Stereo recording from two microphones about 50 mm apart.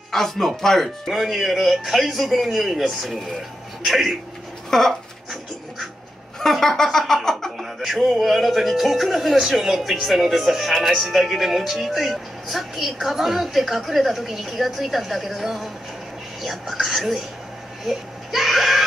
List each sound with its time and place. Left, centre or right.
0.1 s speech: centre
4.6 s speech: centre
6.4 s music: centre
7.5 s speech: centre
17.8 s baby cry: centre